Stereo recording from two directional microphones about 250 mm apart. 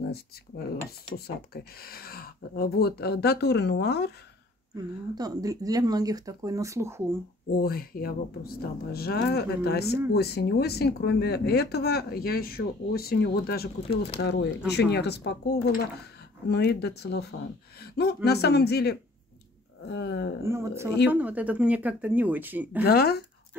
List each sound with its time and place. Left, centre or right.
1.1 s speech: left
4.7 s speech: centre
7.5 s speech: left
20.4 s speech: centre
22.8 s speech: left